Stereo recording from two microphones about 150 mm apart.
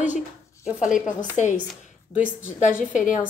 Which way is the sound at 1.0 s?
55° left (ahead or behind).